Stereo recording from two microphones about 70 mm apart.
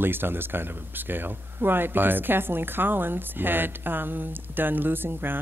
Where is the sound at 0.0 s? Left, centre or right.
Right.